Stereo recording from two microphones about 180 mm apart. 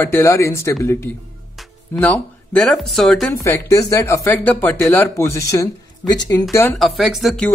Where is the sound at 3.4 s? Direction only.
15° left (ahead or behind).